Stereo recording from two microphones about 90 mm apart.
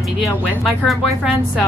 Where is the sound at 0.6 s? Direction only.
Centre (ahead or behind).